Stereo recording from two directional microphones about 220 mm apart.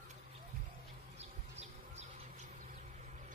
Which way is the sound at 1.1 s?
30° right (ahead or behind).